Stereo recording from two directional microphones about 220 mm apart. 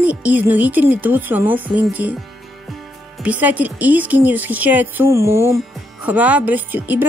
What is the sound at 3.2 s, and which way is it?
A woman's voice, 5° right (ahead or behind).